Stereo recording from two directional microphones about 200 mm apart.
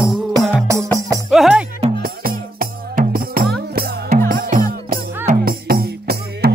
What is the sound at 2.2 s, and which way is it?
Music, 50° right (ahead or behind).